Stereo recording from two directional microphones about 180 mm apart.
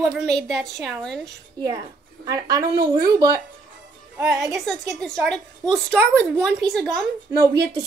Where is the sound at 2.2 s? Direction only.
20° right (ahead or behind).